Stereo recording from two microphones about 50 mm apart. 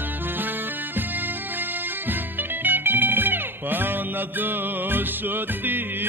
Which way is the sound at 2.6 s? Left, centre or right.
Right.